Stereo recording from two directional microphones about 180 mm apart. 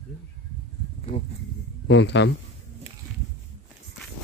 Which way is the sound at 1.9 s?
75° left (ahead or behind).